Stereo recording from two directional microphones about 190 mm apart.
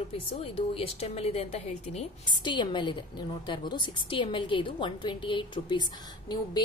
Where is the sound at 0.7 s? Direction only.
30° left (ahead or behind).